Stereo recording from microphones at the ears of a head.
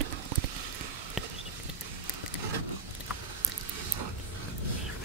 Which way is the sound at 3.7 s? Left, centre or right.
Right.